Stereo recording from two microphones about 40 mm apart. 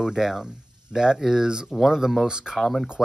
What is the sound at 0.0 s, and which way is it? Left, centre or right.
Speech, centre.